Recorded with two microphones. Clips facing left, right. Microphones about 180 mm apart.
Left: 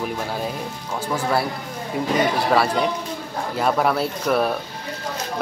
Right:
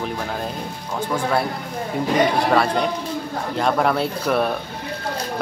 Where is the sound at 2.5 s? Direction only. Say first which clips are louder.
Even; 5° left (ahead or behind).